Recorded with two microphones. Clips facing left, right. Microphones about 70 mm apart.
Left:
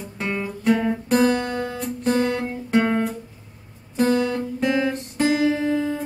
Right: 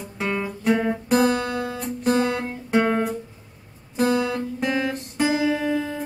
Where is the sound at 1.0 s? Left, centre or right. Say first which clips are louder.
Left 1 dB; centre.